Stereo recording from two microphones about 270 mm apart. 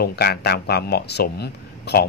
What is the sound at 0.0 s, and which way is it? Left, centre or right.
A man's voice, left.